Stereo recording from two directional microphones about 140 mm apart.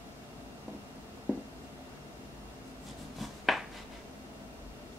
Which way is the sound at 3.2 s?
Centre (ahead or behind).